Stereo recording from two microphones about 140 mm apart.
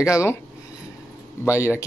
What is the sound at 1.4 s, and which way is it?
Speech, 20° left (ahead or behind).